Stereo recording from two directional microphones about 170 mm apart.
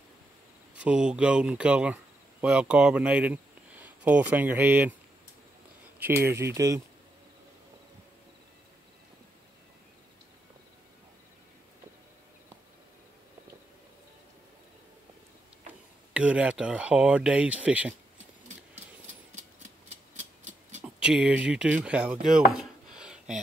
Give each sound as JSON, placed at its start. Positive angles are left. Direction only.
{"t": 0.7, "sound": "speech", "side_deg": -5}
{"t": 6.0, "sound": "speech", "side_deg": -15}
{"t": 16.1, "sound": "speech", "side_deg": -5}
{"t": 19.9, "sound": "a sound", "side_deg": -45}
{"t": 20.8, "sound": "speech", "side_deg": -5}